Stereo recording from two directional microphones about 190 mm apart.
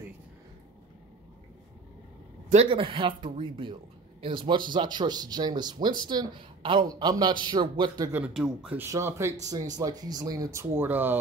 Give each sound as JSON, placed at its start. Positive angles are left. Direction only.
{"t": 2.5, "sound": "a woman's voice", "side_deg": -30}
{"t": 8.1, "sound": "a woman's voice", "side_deg": -5}